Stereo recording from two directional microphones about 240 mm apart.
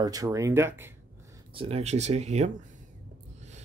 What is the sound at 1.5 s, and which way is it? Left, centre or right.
Speech, right.